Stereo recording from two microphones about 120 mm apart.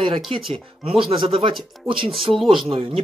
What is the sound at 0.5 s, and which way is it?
Speech, 45° right (ahead or behind).